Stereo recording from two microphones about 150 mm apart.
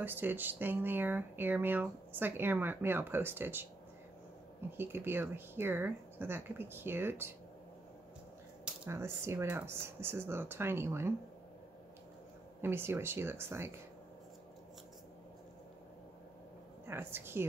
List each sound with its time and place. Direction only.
0.0 s speech: 15° right (ahead or behind)
4.7 s speech: 15° right (ahead or behind)
8.8 s speech: 15° right (ahead or behind)
12.6 s speech: 15° right (ahead or behind)
16.8 s speech: 15° right (ahead or behind)